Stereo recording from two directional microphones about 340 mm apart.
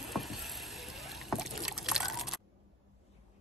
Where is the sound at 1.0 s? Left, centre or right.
Centre.